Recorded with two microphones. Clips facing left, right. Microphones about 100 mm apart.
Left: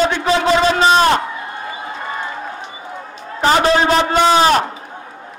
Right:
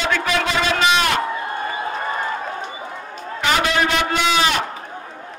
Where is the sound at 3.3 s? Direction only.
35° left (ahead or behind).